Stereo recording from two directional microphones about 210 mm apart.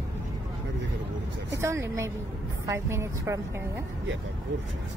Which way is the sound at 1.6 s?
15° right (ahead or behind).